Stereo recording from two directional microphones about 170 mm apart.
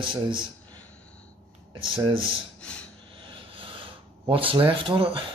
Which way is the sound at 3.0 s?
30° right (ahead or behind).